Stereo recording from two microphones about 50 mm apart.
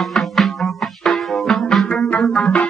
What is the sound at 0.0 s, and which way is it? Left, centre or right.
Music, centre.